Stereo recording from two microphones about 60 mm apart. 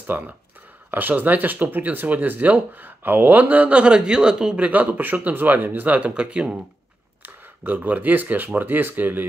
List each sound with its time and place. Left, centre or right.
0.1 s speech: right; by 4.6 s centre
4.6 s speech: right
7.2 s speech: right